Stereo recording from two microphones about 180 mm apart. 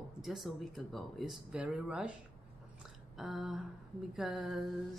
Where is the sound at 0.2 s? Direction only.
Centre (ahead or behind).